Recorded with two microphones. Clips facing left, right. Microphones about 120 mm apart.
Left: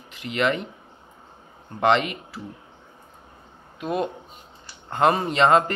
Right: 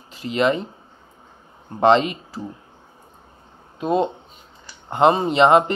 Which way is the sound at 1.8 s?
30° right (ahead or behind).